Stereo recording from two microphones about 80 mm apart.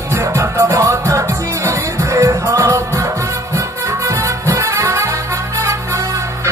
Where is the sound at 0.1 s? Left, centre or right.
Right.